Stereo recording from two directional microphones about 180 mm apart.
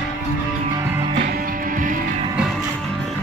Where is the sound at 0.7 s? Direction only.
15° right (ahead or behind).